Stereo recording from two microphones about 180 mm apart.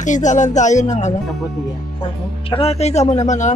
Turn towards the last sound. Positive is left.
turn(degrees=40)  # may be behind; listen again after turning